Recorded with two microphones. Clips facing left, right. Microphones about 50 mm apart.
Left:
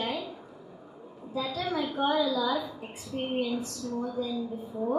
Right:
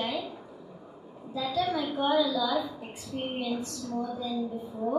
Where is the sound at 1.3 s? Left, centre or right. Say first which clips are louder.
Right 2 dB; left.